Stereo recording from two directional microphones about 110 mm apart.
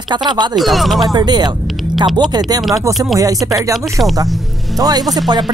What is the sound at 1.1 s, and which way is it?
Speech, 40° right (ahead or behind).